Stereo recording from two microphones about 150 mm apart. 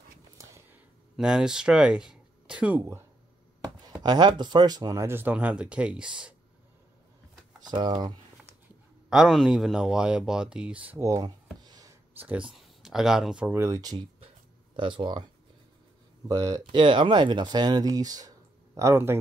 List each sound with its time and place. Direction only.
0.4 s a sound: 20° right (ahead or behind)
1.1 s speech: 5° right (ahead or behind)
4.0 s speech: 30° right (ahead or behind); by 6.3 s 5° right (ahead or behind)
7.6 s speech: 30° right (ahead or behind)
9.1 s speech: centre (ahead or behind); by 11.3 s 25° right (ahead or behind)
11.6 s a sound: 25° right (ahead or behind)
12.3 s speech: 5° right (ahead or behind)
13.6 s speech: 20° right (ahead or behind)
16.3 s speech: 25° right (ahead or behind)